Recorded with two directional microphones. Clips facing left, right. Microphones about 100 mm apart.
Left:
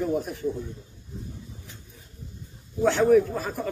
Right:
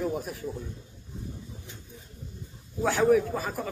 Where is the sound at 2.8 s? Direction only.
Centre (ahead or behind).